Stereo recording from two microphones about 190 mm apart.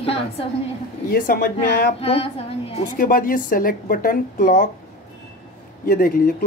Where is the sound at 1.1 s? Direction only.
55° left (ahead or behind).